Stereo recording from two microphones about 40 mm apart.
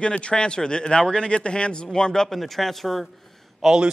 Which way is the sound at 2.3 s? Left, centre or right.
Centre.